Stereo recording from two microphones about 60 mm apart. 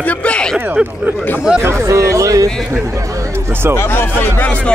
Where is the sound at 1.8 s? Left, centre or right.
Right.